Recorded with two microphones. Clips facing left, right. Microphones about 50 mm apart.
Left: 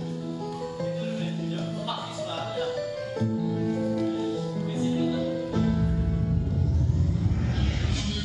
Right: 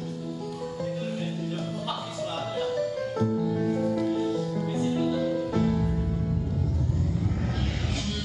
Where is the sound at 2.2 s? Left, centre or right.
Centre.